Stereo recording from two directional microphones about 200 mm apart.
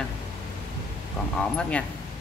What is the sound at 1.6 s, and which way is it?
Speech, 5° left (ahead or behind).